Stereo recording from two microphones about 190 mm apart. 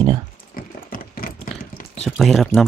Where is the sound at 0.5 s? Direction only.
50° left (ahead or behind).